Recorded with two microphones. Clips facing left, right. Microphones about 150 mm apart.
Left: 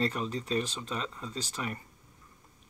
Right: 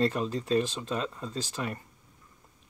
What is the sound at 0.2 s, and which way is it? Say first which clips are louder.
Speech: right 4 dB; centre (ahead or behind).